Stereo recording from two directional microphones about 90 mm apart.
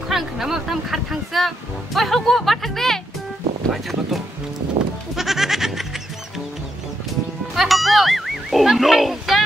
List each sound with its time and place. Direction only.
0.1 s speech: 5° right (ahead or behind)
4.8 s goat: 90° right
5.1 s goat: 5° right (ahead or behind)
7.5 s music: centre (ahead or behind)